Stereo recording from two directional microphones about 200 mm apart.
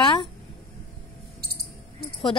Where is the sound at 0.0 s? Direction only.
20° left (ahead or behind).